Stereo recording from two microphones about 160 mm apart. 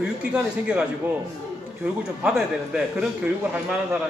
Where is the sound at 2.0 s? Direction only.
5° right (ahead or behind).